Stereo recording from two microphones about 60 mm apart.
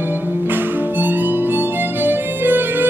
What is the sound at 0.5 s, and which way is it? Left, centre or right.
Harmonica, right.